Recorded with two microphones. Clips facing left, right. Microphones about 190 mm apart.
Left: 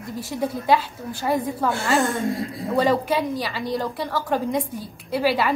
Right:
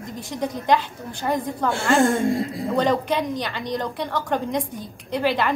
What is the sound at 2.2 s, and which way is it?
Speech, 25° right (ahead or behind).